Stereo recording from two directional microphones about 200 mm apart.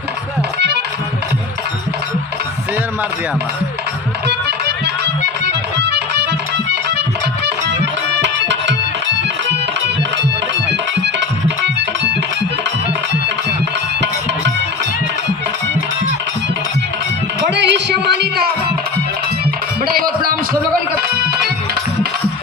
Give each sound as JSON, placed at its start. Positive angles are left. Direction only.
{"t": 4.3, "sound": "music", "side_deg": -55}
{"t": 7.6, "sound": "music", "side_deg": -60}
{"t": 17.5, "sound": "a sound", "side_deg": -60}
{"t": 19.8, "sound": "music", "side_deg": -50}